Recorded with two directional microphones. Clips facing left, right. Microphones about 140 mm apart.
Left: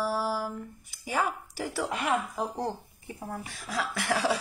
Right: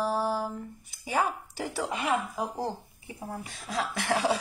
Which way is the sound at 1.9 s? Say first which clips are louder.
Right 1 dB; 5° right (ahead or behind).